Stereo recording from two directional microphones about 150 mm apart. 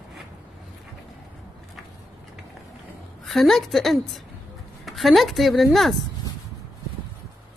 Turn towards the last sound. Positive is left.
turn(degrees=0)  # may be behind; listen again after turning